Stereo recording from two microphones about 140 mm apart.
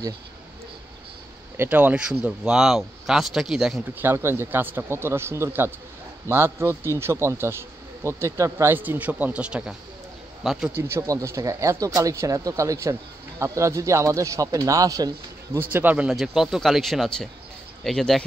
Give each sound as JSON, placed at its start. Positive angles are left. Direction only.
{"t": 1.6, "sound": "speech", "side_deg": -10}
{"t": 4.0, "sound": "speech", "side_deg": -15}
{"t": 10.7, "sound": "speech", "side_deg": -20}